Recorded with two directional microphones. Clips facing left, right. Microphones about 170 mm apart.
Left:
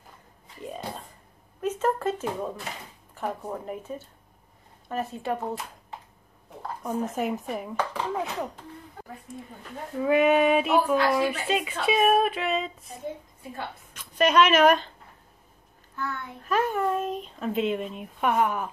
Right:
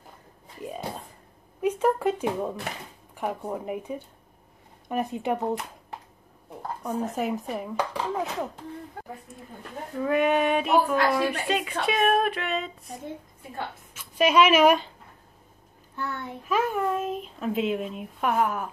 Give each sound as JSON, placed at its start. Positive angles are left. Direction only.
{"t": 1.6, "sound": "a sound", "side_deg": -10}
{"t": 3.2, "sound": "speech", "side_deg": -10}
{"t": 6.8, "sound": "speech", "side_deg": 0}
{"t": 10.0, "sound": "speech", "side_deg": 0}
{"t": 13.9, "sound": "speech", "side_deg": -10}
{"t": 16.4, "sound": "speech", "side_deg": -5}